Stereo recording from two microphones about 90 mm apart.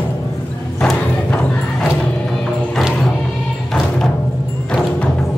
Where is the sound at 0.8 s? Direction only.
10° left (ahead or behind).